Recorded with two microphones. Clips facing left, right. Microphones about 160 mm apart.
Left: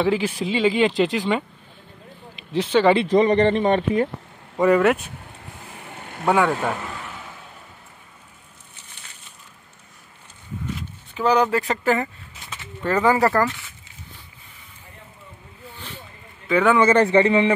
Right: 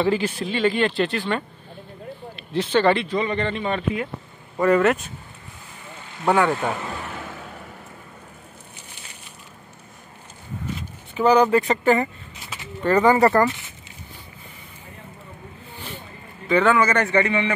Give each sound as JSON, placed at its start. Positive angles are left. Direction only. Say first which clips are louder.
{"t": 0.0, "sound": "speech", "louder": "even", "side_deg": 5}
{"t": 2.5, "sound": "speech", "louder": "left 2 dB", "side_deg": 10}
{"t": 3.2, "sound": "a man's voice", "louder": "left 8 dB", "side_deg": 40}
{"t": 4.6, "sound": "speech", "louder": "left 1 dB", "side_deg": 10}
{"t": 6.2, "sound": "speech", "louder": "even", "side_deg": 0}
{"t": 10.8, "sound": "speech", "louder": "right 4 dB", "side_deg": 0}
{"t": 16.4, "sound": "a man's voice", "louder": "even", "side_deg": 5}
{"t": 16.7, "sound": "a man's voice", "louder": "left 4 dB", "side_deg": 30}